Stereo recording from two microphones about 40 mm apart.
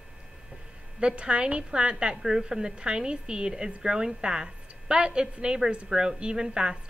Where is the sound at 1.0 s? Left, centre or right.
Right.